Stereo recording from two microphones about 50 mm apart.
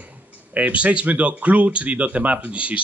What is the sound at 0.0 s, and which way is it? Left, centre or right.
Speech, right.